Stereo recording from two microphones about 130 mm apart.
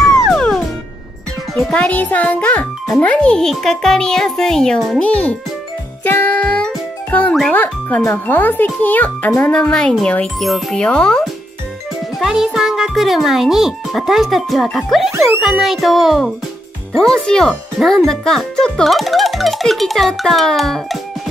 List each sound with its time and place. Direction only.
0.0 s music: 5° left (ahead or behind)
1.5 s a child's voice: 5° left (ahead or behind)
6.0 s music: 15° left (ahead or behind)
7.5 s a child's voice: 15° left (ahead or behind)